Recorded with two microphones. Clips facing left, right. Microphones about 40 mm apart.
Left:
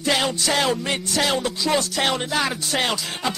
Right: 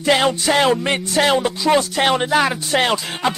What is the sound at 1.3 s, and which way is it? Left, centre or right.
Speech, right.